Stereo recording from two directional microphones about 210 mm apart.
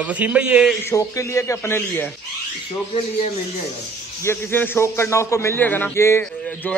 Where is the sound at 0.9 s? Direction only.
15° left (ahead or behind).